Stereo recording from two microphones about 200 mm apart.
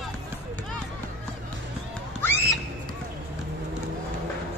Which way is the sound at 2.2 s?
10° left (ahead or behind).